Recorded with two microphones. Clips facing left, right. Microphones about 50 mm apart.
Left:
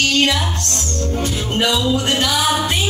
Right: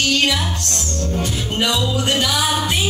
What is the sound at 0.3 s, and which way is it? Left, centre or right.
Music, centre.